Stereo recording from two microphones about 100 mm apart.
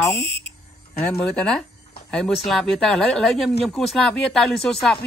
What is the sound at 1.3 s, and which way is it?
Speech, 10° left (ahead or behind).